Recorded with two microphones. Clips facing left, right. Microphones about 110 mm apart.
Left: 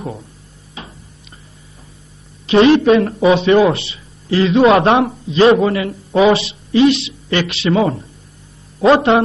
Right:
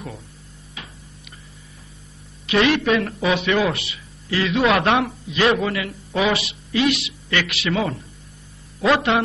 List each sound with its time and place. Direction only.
2.4 s a man's voice: 30° left (ahead or behind)